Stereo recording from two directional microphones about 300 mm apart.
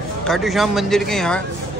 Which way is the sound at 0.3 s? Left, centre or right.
Centre.